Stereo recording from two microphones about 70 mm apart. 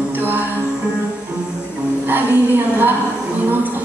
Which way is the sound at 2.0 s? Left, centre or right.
Right.